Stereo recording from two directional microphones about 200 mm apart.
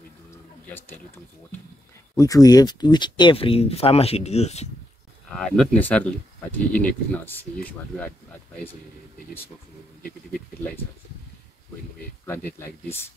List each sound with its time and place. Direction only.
0.3 s a sound: 10° left (ahead or behind)
2.1 s speech: 15° left (ahead or behind); by 4.6 s 35° left (ahead or behind)
5.3 s speech: 5° left (ahead or behind)
12.3 s speech: 10° left (ahead or behind)